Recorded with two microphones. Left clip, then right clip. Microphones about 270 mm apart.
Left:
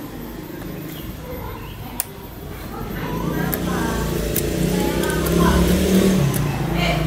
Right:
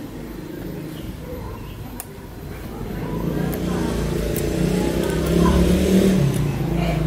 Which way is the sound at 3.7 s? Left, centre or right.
Centre.